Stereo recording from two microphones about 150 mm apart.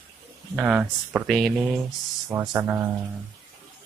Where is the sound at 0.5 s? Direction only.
10° right (ahead or behind).